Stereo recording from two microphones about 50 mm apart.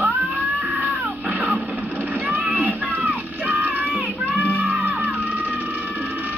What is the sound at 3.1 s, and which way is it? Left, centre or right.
Music, right.